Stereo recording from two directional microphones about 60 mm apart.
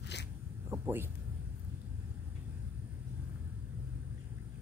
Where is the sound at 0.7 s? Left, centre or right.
Right.